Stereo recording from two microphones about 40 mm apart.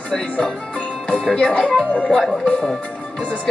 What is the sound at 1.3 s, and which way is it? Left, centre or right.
Speech, left.